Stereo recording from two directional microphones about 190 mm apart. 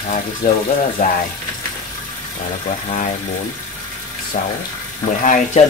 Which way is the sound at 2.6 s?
40° left (ahead or behind).